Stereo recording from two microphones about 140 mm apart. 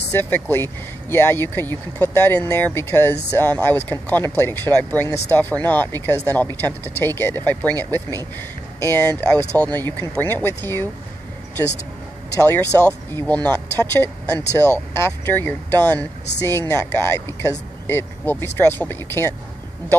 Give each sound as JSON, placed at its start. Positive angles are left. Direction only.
{"t": 0.1, "sound": "speech", "side_deg": 15}
{"t": 12.4, "sound": "speech", "side_deg": 15}